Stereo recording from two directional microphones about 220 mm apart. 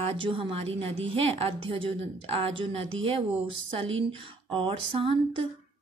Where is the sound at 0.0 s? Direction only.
25° right (ahead or behind).